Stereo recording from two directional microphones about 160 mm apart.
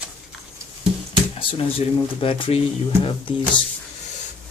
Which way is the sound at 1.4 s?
35° left (ahead or behind).